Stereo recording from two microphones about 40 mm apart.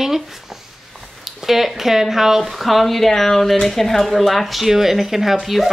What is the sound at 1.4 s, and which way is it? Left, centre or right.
A woman's voice, centre.